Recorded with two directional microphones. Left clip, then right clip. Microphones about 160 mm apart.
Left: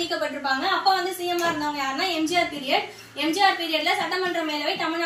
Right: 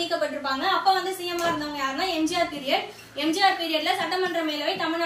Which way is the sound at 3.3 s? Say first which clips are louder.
Left 1 dB; 15° right (ahead or behind).